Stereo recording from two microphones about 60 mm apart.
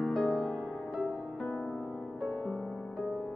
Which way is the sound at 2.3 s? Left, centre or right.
Centre.